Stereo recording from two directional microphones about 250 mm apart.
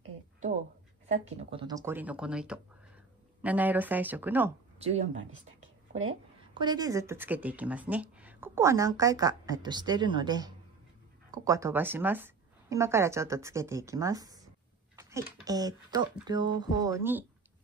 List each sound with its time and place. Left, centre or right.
1.0 s speech: right; by 4.6 s centre
4.7 s speech: right
6.6 s speech: centre